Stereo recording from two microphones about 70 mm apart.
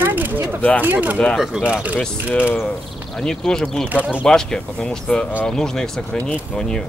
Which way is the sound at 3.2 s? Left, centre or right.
Centre.